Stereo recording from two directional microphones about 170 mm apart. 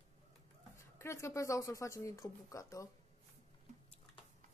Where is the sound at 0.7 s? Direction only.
15° left (ahead or behind).